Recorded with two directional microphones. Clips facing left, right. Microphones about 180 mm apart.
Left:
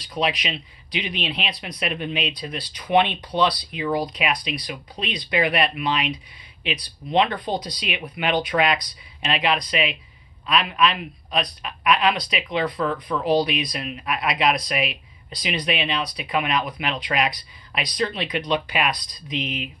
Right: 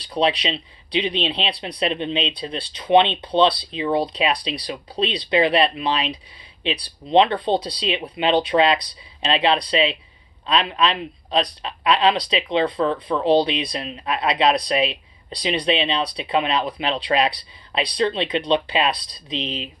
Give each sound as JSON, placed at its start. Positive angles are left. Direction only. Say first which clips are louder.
{"t": 0.0, "sound": "speech", "louder": "right 4 dB", "side_deg": -30}